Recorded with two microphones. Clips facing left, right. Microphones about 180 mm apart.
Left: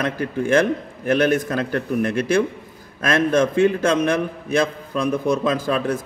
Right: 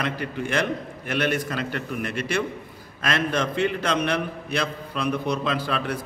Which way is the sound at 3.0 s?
45° left (ahead or behind).